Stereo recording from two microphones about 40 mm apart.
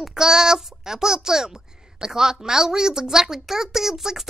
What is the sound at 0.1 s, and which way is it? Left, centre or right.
Speech, centre.